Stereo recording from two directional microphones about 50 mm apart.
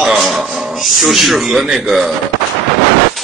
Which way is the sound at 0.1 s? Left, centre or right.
Centre.